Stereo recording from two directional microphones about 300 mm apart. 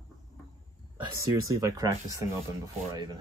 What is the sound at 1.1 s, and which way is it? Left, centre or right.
Speech, centre.